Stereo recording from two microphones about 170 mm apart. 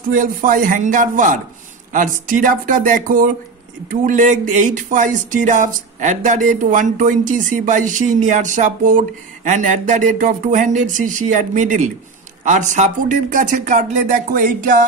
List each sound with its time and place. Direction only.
0.1 s speech: 50° right (ahead or behind)